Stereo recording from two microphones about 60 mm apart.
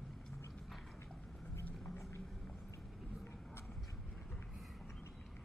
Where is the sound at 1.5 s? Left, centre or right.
Left.